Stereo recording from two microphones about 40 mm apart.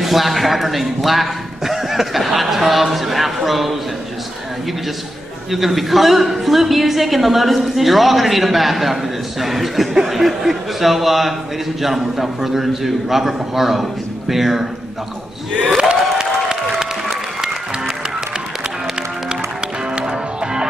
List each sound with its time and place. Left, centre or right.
0.0 s a man's voice: centre
5.5 s a woman's voice: centre
15.8 s applause: right
20.0 s music: centre